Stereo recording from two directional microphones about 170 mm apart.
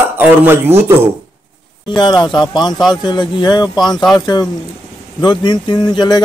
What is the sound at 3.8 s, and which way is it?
Speech, centre (ahead or behind).